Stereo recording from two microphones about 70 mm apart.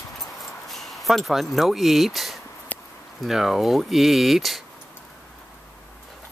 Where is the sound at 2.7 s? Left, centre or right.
Left.